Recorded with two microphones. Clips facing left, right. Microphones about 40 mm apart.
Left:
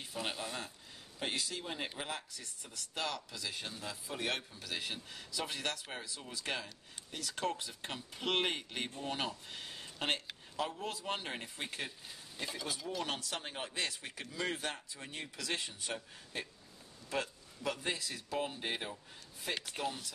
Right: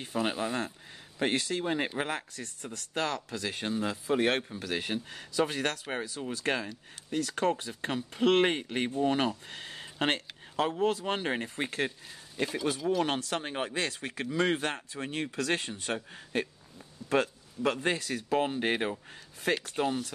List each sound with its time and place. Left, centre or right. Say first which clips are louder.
0.4 s a man's voice: right 10 dB; right
6.3 s a man's voice: right 8 dB; right
12.6 s speech: right 11 dB; right
19.8 s speech: right 9 dB; right